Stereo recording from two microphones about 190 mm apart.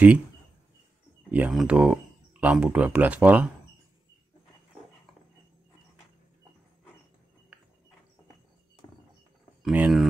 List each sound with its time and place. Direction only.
1.3 s speech: 5° right (ahead or behind)
9.6 s speech: 5° right (ahead or behind)